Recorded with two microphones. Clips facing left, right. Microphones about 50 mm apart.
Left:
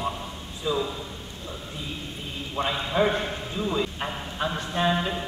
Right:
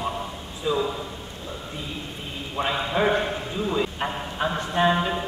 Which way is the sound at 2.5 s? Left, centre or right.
Centre.